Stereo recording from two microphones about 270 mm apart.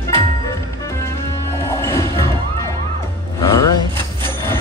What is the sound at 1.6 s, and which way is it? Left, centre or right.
Music, centre.